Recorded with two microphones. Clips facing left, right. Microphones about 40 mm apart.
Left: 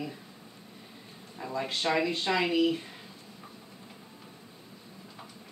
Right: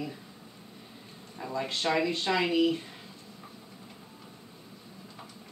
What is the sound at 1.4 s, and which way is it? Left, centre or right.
Speech, centre.